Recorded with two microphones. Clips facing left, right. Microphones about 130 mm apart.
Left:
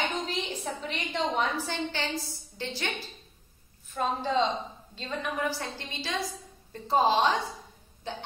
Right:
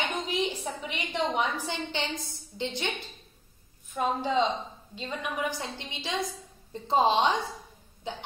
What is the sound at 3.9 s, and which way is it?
A woman's voice, 10° right (ahead or behind).